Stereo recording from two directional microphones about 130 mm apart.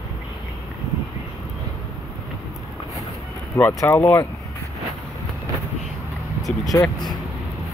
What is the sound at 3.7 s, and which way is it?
Speech, 20° left (ahead or behind).